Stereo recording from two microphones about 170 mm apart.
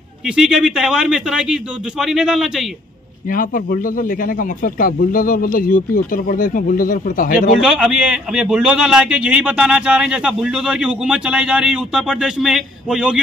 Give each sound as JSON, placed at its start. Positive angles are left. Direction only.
{"t": 0.4, "sound": "a man's voice", "side_deg": 0}
{"t": 3.3, "sound": "a man's voice", "side_deg": 55}
{"t": 7.6, "sound": "a man's voice", "side_deg": -5}